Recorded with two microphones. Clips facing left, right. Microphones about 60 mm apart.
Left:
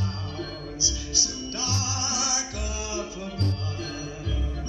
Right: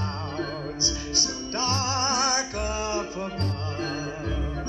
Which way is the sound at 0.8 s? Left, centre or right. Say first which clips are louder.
Right 3 dB; right.